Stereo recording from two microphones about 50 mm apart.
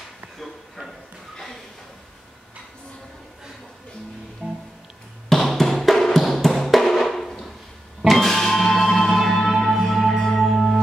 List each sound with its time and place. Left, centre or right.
0.4 s a sound: centre
4.4 s music: centre
5.3 s music: centre